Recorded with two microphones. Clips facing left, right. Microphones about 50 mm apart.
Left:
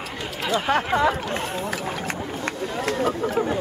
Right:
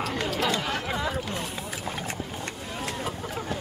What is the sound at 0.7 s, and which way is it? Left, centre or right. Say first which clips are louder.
Speech: left 10 dB; left.